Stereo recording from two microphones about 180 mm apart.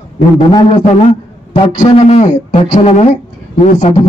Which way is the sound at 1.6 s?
35° left (ahead or behind).